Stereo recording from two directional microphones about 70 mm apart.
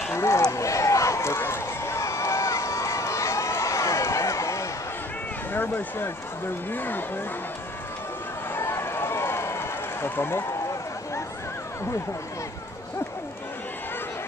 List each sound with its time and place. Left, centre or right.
0.1 s a sound: left
0.5 s run: left
5.5 s speech: left
8.5 s run: left